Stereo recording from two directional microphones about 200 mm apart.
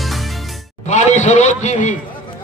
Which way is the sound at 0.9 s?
35° left (ahead or behind).